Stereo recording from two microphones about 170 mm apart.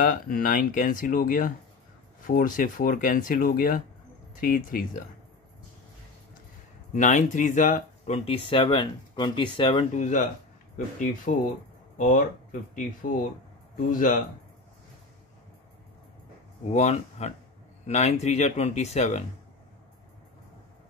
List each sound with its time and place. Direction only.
0.0 s speech: 55° left (ahead or behind)
6.9 s speech: 45° left (ahead or behind)
8.3 s speech: 30° left (ahead or behind)
9.9 s speech: 45° left (ahead or behind)
11.3 s speech: 50° left (ahead or behind)
16.7 s speech: 40° left (ahead or behind)